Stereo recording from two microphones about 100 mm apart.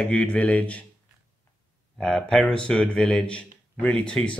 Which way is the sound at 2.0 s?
5° left (ahead or behind).